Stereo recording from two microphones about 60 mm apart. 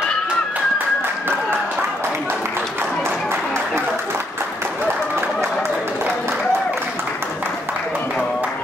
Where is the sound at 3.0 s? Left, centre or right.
Right.